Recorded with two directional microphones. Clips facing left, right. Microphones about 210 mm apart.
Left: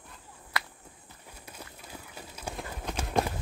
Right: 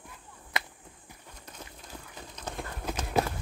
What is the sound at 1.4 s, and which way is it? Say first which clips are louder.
Horse: even; 5° left (ahead or behind).